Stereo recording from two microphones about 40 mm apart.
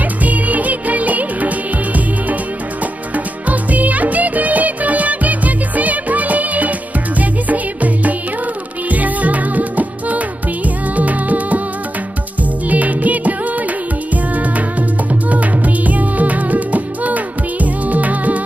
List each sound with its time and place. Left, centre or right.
0.2 s music: right
3.4 s music of bollywood: right
7.2 s music: right
12.6 s music: right